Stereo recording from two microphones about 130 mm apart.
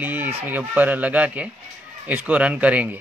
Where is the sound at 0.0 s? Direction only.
15° right (ahead or behind).